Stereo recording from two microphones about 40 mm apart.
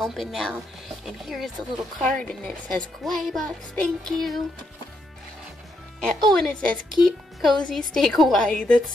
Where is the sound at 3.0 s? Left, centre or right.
Centre.